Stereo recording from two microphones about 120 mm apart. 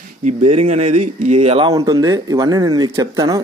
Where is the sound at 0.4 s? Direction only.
65° right (ahead or behind).